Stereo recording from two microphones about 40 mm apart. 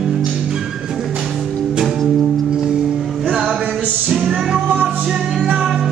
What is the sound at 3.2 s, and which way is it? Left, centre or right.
Music, right.